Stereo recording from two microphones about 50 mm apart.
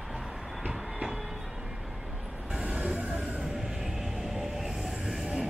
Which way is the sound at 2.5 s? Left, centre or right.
Right.